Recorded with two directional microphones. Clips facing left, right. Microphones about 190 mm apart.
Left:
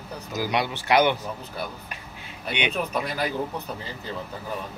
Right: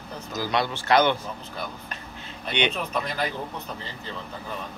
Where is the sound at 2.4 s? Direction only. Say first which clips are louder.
Right 1 dB; 10° left (ahead or behind).